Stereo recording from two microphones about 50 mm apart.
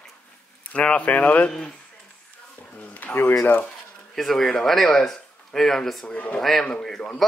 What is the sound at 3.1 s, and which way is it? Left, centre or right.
Speech, left.